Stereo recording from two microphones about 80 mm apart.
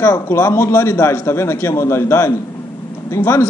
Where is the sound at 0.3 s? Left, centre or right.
Left.